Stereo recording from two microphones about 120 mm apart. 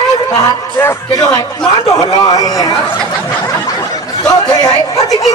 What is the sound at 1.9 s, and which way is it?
Speech, 35° left (ahead or behind).